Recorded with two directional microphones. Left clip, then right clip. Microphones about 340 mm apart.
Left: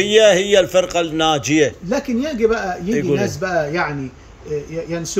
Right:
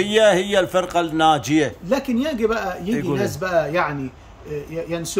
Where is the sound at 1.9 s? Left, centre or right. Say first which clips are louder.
Left 1 dB; right.